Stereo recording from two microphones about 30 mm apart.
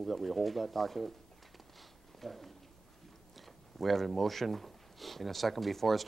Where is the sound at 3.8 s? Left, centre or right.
Centre.